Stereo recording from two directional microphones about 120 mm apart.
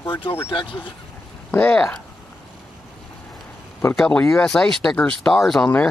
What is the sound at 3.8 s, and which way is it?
Speech, 20° left (ahead or behind).